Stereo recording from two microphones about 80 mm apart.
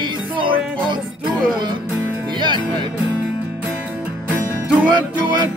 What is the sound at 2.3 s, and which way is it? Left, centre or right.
Music, right.